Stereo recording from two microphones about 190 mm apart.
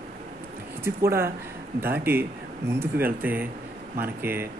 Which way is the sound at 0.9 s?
15° right (ahead or behind).